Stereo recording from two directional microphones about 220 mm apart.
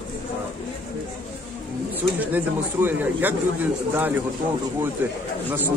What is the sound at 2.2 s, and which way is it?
A man's voice, 10° right (ahead or behind).